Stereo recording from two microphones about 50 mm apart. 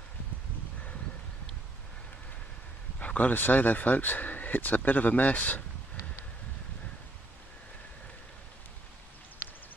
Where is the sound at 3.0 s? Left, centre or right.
Left.